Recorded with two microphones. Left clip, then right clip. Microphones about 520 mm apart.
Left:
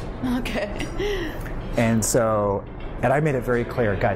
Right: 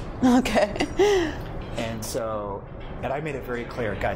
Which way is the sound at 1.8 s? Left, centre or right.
Left.